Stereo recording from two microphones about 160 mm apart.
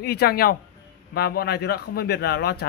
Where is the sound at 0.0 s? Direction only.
85° left.